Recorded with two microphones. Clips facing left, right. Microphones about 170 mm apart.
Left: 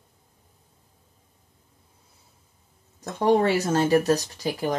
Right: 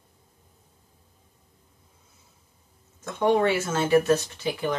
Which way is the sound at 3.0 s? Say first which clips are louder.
Left 1 dB; 35° left (ahead or behind).